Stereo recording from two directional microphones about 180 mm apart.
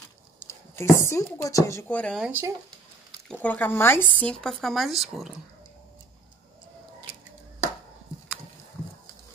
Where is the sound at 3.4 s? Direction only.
10° left (ahead or behind).